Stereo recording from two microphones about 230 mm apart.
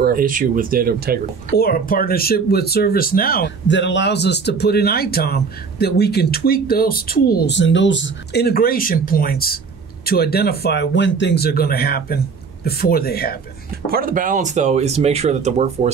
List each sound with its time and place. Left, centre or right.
0.0 s speech: right
1.6 s speech: left
13.8 s speech: right